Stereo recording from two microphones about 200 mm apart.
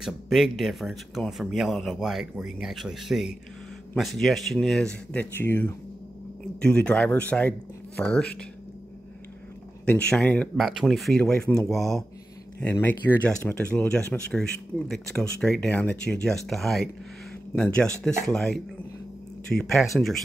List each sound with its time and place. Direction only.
0.0 s speech: centre (ahead or behind)
9.8 s speech: 5° left (ahead or behind)
18.2 s speech: 5° left (ahead or behind)